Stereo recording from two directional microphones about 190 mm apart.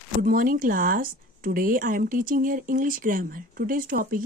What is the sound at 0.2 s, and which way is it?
Speech, 50° right (ahead or behind).